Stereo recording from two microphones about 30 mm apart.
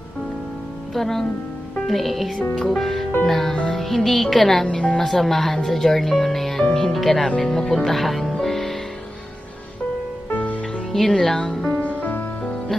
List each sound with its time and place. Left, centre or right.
0.9 s speech: centre
7.2 s speech: centre
8.4 s music: centre
10.3 s music: left
10.9 s speech: centre
11.3 s music: left
11.7 s music: left
12.1 s music: left